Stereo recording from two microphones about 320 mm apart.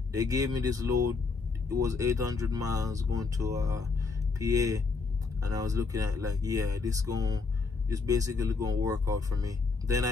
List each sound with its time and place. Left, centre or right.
0.1 s speech: centre